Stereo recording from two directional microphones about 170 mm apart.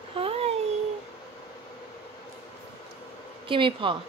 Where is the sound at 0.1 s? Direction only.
35° right (ahead or behind).